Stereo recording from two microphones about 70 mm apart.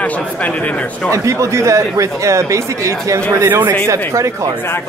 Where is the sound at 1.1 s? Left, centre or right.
Right.